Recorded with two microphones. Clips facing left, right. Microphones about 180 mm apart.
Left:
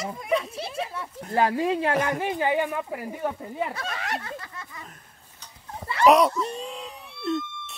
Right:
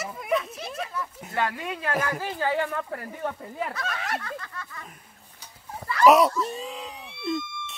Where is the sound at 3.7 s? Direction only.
30° left (ahead or behind).